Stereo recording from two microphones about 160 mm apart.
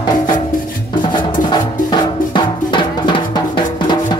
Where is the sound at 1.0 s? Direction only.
30° left (ahead or behind).